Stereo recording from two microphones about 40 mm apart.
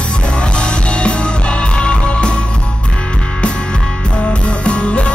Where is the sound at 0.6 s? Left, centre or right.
Left.